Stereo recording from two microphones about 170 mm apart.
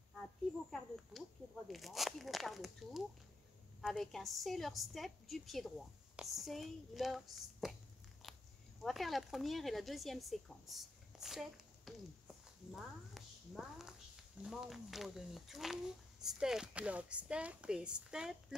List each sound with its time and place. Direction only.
0.7 s speech: centre (ahead or behind)
7.6 s a sound: centre (ahead or behind)
8.8 s a woman's voice: centre (ahead or behind)